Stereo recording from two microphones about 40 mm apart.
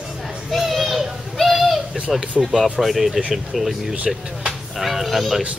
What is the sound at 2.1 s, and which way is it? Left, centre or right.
Speech, centre.